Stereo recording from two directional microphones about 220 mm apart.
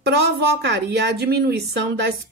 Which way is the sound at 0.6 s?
50° right (ahead or behind).